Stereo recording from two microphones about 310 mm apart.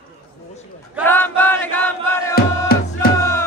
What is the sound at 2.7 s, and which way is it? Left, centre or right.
Music, left.